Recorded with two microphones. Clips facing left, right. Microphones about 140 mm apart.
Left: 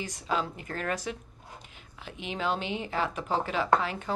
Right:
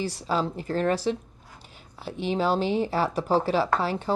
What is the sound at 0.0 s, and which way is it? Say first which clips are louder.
Speech: right 5 dB; 35° right (ahead or behind).